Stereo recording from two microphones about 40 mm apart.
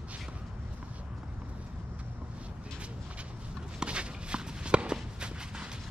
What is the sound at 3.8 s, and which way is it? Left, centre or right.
Walk, right.